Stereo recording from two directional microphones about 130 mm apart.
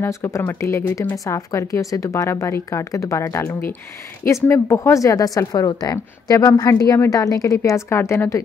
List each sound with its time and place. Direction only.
0.0 s speech: 20° left (ahead or behind)